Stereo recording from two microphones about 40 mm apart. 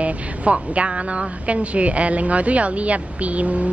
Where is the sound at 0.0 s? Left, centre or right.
Right.